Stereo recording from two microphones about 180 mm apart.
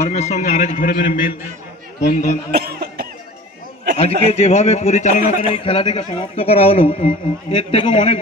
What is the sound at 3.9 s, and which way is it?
A man's voice, 35° left (ahead or behind).